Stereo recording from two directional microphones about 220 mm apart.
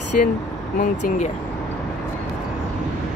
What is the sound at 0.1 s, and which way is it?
Speech, 40° left (ahead or behind).